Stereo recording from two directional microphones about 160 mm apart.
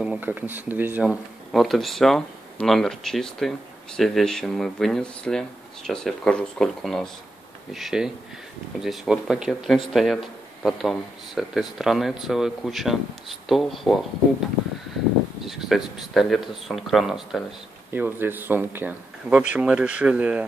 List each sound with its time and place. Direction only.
0.0 s speech: 10° right (ahead or behind)
1.0 s speech: centre (ahead or behind)
15.4 s speech: centre (ahead or behind)
17.9 s speech: 10° right (ahead or behind)